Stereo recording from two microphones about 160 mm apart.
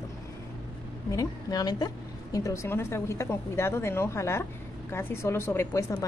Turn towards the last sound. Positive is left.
turn(degrees=20)  # may be behind; listen again after turning